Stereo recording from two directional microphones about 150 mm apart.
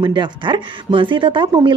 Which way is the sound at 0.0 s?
30° right (ahead or behind).